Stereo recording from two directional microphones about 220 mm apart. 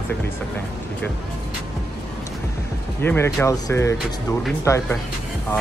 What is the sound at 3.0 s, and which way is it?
Speech, 10° left (ahead or behind).